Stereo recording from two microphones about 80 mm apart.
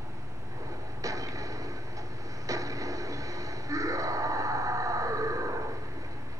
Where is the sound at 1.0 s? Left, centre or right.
Right.